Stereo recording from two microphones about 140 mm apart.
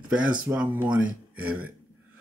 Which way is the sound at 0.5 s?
10° right (ahead or behind).